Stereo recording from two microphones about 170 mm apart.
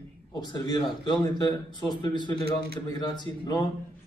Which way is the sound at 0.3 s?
25° left (ahead or behind).